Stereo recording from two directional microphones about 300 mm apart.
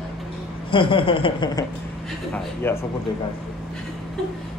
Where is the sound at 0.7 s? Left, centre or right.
Centre.